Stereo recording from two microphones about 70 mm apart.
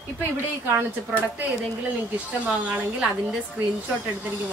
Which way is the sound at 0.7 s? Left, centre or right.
Right.